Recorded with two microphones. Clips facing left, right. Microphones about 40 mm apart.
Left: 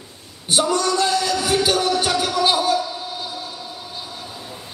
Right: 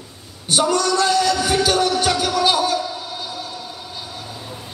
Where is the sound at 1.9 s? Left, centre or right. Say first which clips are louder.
Right 1 dB; centre.